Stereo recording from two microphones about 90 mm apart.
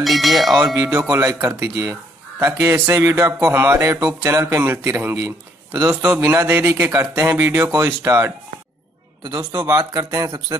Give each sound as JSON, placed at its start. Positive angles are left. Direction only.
{"t": 0.0, "sound": "speech", "side_deg": 0}
{"t": 0.7, "sound": "a man's voice", "side_deg": -40}
{"t": 6.1, "sound": "a man's voice", "side_deg": -25}
{"t": 9.5, "sound": "a man's voice", "side_deg": -40}